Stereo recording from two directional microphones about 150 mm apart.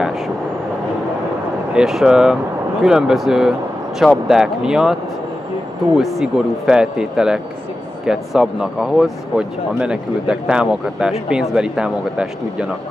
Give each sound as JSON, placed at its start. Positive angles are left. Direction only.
{"t": 1.7, "sound": "speech", "side_deg": -5}
{"t": 5.9, "sound": "speech", "side_deg": 0}